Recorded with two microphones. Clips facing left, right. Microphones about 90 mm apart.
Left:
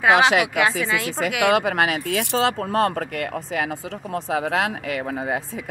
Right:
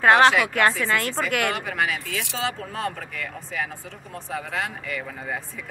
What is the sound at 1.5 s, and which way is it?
Speech, 75° left (ahead or behind).